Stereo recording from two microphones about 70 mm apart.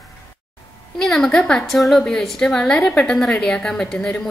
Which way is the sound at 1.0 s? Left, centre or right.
Centre.